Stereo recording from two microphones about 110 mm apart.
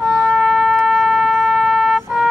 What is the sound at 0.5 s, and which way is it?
Wind instrument, centre (ahead or behind).